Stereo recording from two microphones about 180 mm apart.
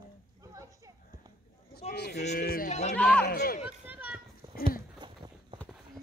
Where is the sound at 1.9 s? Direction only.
65° left (ahead or behind).